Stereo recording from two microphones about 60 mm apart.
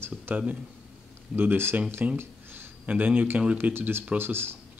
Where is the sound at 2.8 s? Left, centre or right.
Right.